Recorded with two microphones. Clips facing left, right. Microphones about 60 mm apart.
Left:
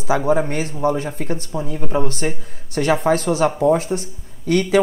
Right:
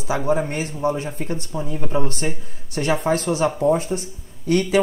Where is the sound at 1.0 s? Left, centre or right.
Left.